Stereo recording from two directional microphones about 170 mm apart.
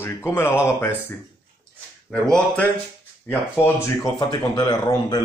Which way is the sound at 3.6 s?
20° left (ahead or behind).